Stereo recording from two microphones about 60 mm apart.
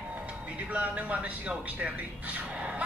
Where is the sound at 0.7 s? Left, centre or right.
Right.